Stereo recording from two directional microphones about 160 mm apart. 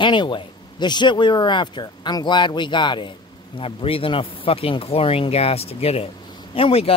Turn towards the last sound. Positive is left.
turn(degrees=35)  # may be behind; listen again after turning